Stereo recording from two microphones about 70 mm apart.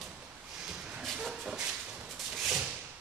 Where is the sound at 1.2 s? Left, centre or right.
Centre.